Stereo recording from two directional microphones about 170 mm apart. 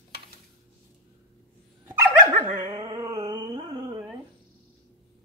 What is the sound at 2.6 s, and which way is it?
Carnatic music, 20° right (ahead or behind).